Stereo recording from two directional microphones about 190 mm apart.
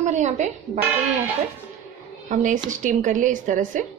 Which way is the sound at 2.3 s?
40° right (ahead or behind).